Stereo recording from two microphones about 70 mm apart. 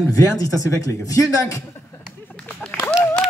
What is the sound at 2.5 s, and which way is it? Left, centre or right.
Run, centre.